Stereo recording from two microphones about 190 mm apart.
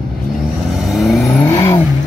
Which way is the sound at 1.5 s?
20° left (ahead or behind).